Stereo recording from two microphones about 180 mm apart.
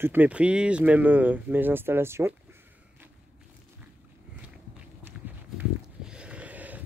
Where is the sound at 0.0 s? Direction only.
10° right (ahead or behind).